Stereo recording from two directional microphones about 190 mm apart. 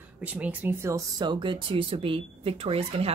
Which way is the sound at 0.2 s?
5° right (ahead or behind).